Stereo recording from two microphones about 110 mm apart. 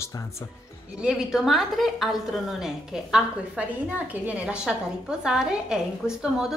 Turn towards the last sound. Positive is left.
turn(degrees=-5)  # may be behind; listen again after turning